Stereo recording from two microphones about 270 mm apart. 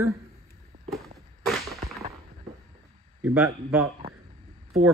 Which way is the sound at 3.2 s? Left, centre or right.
Centre.